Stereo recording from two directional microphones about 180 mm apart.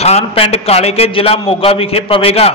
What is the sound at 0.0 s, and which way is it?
A man's voice, 35° left (ahead or behind).